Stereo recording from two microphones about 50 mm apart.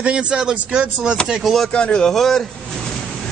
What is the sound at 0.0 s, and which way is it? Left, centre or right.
Speech, right.